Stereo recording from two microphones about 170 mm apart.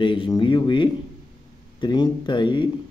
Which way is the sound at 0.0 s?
30° left (ahead or behind).